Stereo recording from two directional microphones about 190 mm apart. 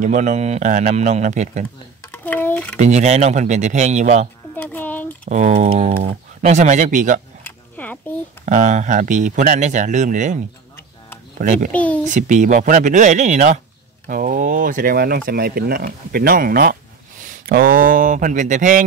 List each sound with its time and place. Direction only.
0.0 s speech: 40° right (ahead or behind)
2.1 s a sound: 10° left (ahead or behind)
2.8 s speech: 35° right (ahead or behind)
4.6 s a sound: 10° left (ahead or behind)
5.2 s speech: 35° right (ahead or behind)
7.4 s a sound: 10° left (ahead or behind)
8.5 s speech: 40° right (ahead or behind)
11.7 s a child's voice: 5° left (ahead or behind)
12.0 s speech: 40° right (ahead or behind)